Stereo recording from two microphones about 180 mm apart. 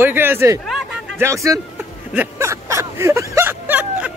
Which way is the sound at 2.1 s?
15° right (ahead or behind).